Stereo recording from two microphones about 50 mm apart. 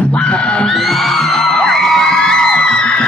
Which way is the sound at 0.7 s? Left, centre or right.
Centre.